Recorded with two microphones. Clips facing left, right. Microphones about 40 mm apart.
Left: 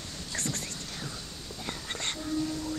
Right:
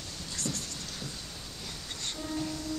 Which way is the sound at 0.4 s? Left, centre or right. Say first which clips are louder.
Left 1 dB; left.